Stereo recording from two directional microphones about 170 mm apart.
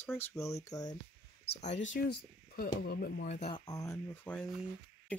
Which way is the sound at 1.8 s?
80° left.